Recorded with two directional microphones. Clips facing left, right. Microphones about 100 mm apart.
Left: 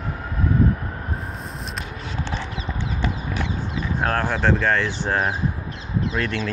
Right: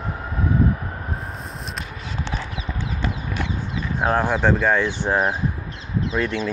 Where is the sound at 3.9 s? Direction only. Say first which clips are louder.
Right 3 dB; 15° right (ahead or behind).